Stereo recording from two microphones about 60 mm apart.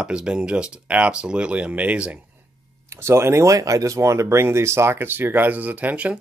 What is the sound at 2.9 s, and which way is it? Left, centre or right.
Speech, right.